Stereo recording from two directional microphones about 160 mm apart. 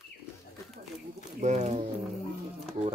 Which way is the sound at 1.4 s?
50° right (ahead or behind).